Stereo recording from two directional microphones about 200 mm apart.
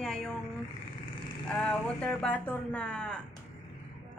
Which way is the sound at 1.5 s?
5° left (ahead or behind).